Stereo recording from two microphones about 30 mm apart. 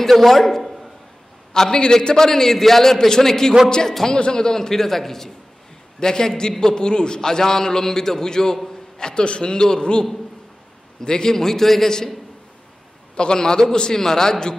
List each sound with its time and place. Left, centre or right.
0.1 s a man's voice: centre
1.5 s a man's voice: left
7.2 s a man's voice: centre
8.9 s a sound: left
9.2 s a man's voice: left; by 11.9 s centre
13.1 s a man's voice: left